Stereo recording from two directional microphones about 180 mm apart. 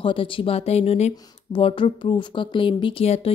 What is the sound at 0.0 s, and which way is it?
Speech, 30° left (ahead or behind).